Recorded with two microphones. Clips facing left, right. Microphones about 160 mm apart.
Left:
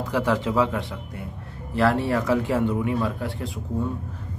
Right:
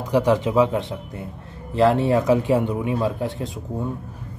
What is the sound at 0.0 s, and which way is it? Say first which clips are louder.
A man's voice: right 4 dB; 15° right (ahead or behind).